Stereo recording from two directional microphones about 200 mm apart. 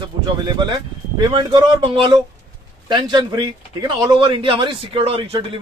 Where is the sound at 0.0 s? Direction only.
20° right (ahead or behind).